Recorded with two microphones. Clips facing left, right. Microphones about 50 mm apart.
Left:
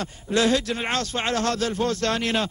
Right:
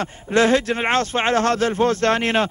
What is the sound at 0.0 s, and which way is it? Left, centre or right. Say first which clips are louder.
A man's voice: right 5 dB; right.